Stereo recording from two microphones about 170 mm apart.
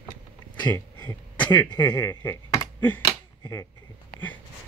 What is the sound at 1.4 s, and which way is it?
Speech, 25° left (ahead or behind).